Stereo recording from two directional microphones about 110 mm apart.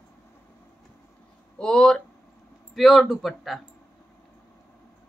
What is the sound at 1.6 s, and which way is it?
Speech, 5° left (ahead or behind).